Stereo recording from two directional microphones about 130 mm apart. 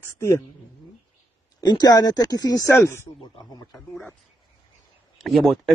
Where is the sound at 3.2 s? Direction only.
30° left (ahead or behind).